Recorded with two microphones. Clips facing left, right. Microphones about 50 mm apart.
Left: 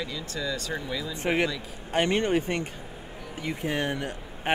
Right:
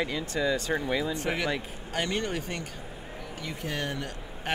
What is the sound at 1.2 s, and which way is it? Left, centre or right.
Speech, left.